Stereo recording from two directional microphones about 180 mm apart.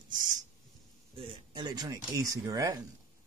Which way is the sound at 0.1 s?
45° right (ahead or behind).